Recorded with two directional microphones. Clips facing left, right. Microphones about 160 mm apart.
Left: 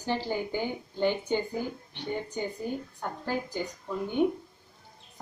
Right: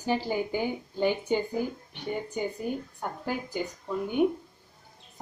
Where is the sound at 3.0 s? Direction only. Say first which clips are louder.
Left 1 dB; 10° right (ahead or behind).